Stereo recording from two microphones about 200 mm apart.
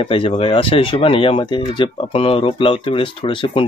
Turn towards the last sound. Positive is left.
turn(degrees=25)  # may be behind; listen again after turning